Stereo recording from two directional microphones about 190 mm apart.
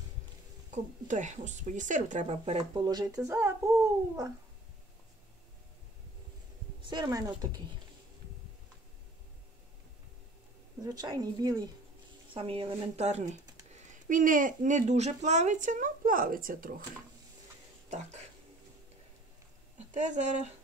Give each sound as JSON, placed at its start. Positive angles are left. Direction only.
{"t": 0.7, "sound": "speech", "side_deg": -40}
{"t": 2.5, "sound": "speech", "side_deg": -20}
{"t": 3.3, "sound": "a sound", "side_deg": -15}
{"t": 6.8, "sound": "speech", "side_deg": -25}
{"t": 10.8, "sound": "speech", "side_deg": -20}
{"t": 17.8, "sound": "speech", "side_deg": -35}
{"t": 19.9, "sound": "speech", "side_deg": -40}